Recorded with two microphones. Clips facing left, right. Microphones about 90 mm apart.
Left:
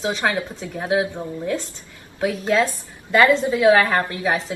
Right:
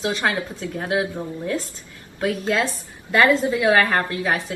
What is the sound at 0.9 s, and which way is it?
Speech, 25° left (ahead or behind).